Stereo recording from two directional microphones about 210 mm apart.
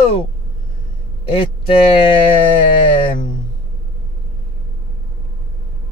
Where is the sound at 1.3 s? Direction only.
25° left (ahead or behind).